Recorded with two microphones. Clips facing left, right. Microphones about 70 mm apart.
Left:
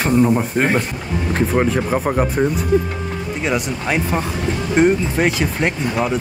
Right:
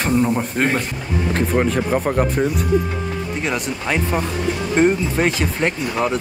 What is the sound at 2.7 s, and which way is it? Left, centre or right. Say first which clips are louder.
Speech: left 2 dB; left.